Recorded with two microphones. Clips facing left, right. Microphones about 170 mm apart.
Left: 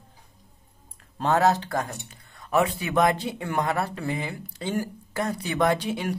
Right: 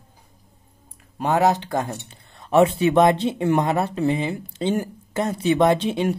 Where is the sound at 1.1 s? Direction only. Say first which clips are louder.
Right 2 dB; 15° right (ahead or behind).